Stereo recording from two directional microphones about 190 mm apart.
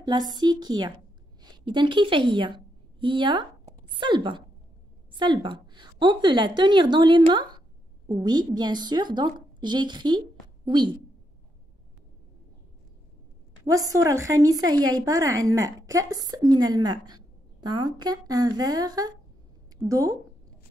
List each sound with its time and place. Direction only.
0.0 s a woman's voice: 20° right (ahead or behind)
13.7 s a woman's voice: 20° right (ahead or behind)